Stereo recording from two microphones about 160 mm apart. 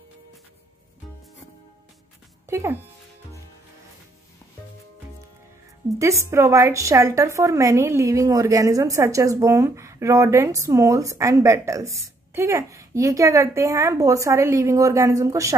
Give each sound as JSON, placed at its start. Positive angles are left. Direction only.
{"t": 2.5, "sound": "speech", "side_deg": -15}
{"t": 6.3, "sound": "a woman's voice", "side_deg": -15}